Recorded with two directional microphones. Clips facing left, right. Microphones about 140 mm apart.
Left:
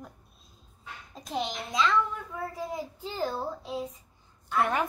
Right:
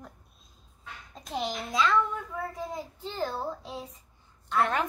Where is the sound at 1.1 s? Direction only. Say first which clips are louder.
Even; centre (ahead or behind).